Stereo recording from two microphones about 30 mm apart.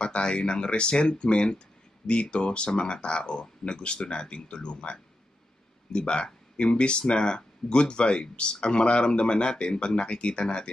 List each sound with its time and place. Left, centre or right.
0.0 s speech: left